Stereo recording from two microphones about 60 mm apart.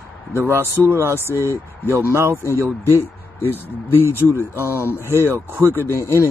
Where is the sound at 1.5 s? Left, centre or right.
Right.